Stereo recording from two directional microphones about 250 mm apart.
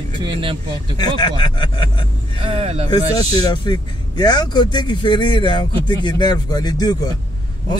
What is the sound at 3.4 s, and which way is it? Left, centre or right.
Speech, centre.